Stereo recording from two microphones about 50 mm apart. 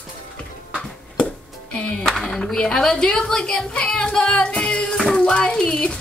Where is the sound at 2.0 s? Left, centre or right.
Centre.